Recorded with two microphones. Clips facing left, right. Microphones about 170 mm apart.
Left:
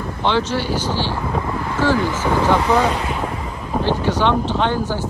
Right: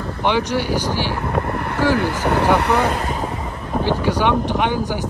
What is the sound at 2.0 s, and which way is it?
Speech, 65° right (ahead or behind).